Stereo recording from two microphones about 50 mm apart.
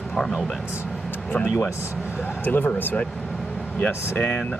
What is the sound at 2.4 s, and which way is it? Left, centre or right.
Speech, left.